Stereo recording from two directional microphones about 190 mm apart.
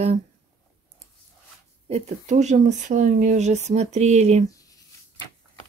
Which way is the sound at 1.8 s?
35° right (ahead or behind).